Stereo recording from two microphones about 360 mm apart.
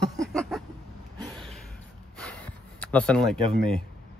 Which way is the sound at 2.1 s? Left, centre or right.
Centre.